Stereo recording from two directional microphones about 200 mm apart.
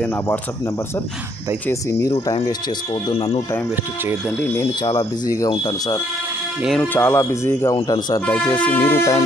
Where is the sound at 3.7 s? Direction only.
10° right (ahead or behind).